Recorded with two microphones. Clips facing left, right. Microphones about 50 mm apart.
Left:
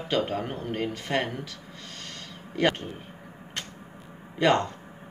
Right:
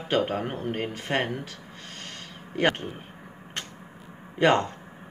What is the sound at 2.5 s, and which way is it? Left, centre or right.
Speech, centre.